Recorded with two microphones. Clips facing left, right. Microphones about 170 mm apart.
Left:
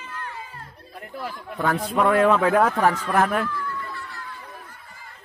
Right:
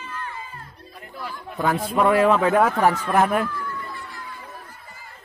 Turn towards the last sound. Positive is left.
turn(degrees=-15)  # may be behind; listen again after turning